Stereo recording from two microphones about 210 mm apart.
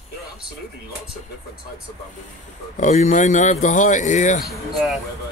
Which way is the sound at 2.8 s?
35° left (ahead or behind).